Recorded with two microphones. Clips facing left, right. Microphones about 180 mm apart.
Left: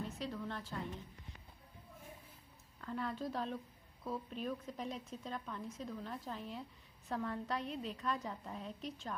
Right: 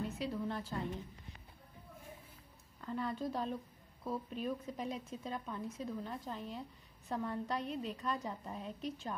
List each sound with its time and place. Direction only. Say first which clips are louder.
0.2 s a woman's voice: right 4 dB; 10° right (ahead or behind)
2.8 s speech: right 2 dB; 5° right (ahead or behind)